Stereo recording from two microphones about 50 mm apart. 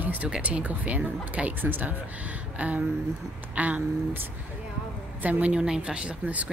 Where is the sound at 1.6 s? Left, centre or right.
Right.